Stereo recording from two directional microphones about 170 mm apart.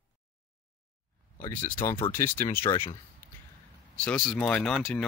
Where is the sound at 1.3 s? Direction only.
15° left (ahead or behind).